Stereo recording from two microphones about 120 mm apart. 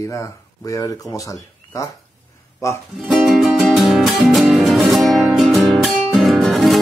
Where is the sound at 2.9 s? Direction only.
Centre (ahead or behind).